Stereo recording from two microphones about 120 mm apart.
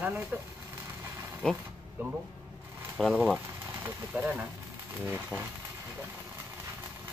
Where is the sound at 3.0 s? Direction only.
5° left (ahead or behind).